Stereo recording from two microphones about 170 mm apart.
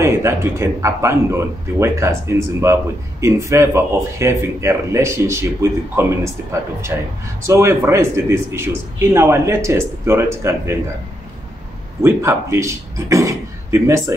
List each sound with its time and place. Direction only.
0.0 s speech: 15° right (ahead or behind)
12.0 s speech: 15° right (ahead or behind)